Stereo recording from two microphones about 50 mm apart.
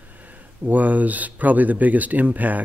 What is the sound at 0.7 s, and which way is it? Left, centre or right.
Speech, right.